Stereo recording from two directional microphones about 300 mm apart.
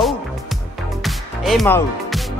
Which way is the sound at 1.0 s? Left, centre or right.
Centre.